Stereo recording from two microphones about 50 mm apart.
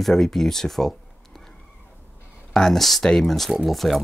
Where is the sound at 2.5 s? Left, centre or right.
Centre.